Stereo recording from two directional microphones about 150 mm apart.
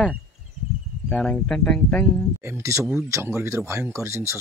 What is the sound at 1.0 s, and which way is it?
Speech, 5° left (ahead or behind).